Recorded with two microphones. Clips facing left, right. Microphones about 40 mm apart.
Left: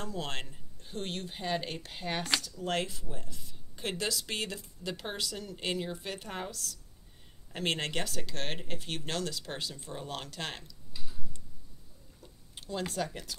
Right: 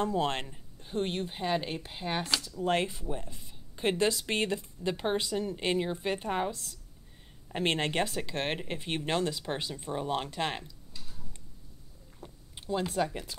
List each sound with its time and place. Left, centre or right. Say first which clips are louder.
0.0 s speech: right 8 dB; right
0.5 s speech: right 5 dB; centre
12.5 s speech: right 4 dB; centre